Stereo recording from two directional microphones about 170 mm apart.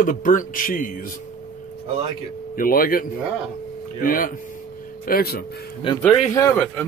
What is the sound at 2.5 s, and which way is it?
Speech, 55° left (ahead or behind).